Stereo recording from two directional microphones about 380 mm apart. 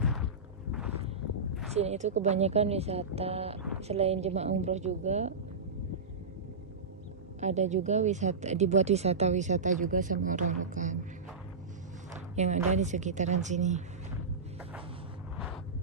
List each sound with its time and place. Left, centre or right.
0.0 s a sound: centre
1.7 s speech: centre
7.3 s speech: centre
12.4 s a woman's voice: centre